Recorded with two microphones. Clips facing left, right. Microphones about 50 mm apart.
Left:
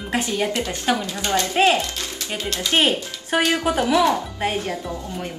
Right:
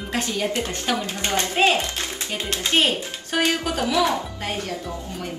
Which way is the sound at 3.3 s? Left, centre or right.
Left.